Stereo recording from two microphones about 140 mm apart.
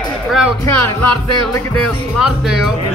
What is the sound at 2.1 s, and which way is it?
Speech, 5° right (ahead or behind).